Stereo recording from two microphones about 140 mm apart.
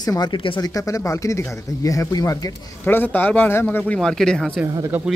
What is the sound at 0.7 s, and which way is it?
A man's voice, 25° left (ahead or behind).